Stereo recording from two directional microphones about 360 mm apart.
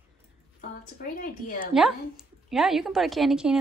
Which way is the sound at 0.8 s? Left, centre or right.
Left.